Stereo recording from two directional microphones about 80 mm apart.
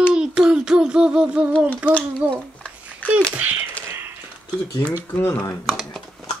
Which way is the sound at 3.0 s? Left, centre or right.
Left.